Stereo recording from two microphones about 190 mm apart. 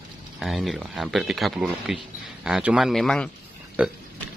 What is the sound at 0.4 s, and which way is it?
Speech, centre (ahead or behind).